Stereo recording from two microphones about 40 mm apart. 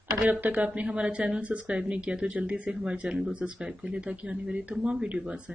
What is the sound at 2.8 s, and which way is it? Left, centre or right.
Speech, centre.